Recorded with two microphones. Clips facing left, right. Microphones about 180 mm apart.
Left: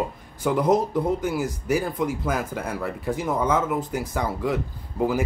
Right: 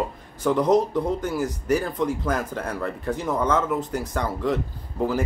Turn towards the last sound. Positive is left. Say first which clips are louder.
# left 1 dB
turn(degrees=10)  # may be behind; listen again after turning